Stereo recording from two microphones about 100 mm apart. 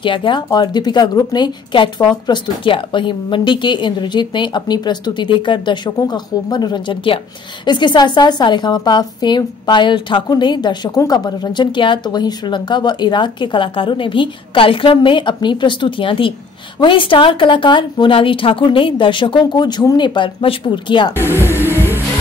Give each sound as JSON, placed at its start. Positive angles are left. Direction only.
{"t": 0.0, "sound": "a woman's voice", "side_deg": 55}
{"t": 20.2, "sound": "a woman's voice", "side_deg": 55}
{"t": 21.2, "sound": "speech", "side_deg": 25}
{"t": 21.5, "sound": "music", "side_deg": -25}